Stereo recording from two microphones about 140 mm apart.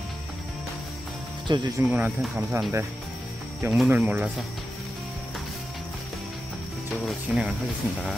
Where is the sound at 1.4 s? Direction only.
35° right (ahead or behind).